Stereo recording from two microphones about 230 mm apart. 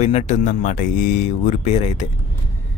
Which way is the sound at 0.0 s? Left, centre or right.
Left.